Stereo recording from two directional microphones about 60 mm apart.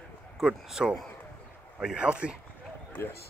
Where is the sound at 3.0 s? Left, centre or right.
Left.